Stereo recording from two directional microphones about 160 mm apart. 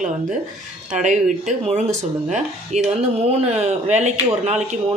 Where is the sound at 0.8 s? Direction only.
50° right (ahead or behind).